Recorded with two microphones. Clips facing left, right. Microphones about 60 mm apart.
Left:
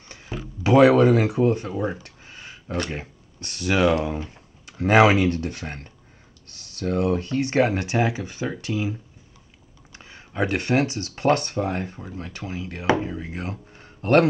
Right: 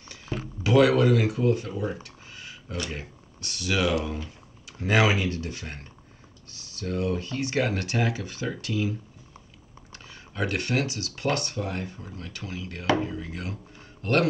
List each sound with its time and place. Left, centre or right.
0.3 s a sound: centre
0.7 s speech: left
1.7 s a sound: left
2.9 s speech: left
4.8 s speech: left
7.6 s speech: left
9.9 s speech: left
12.2 s speech: left